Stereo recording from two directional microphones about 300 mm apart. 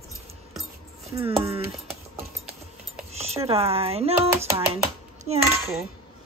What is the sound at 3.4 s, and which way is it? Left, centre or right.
Speech, centre.